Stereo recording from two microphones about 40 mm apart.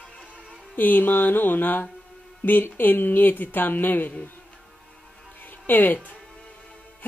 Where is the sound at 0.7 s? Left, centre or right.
Left.